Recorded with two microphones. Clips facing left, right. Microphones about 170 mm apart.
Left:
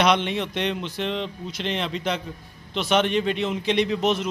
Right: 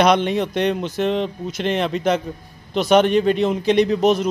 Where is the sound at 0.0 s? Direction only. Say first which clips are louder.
Right 5 dB; 45° right (ahead or behind).